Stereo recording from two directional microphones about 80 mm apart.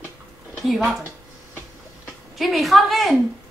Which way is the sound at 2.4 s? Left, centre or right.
Centre.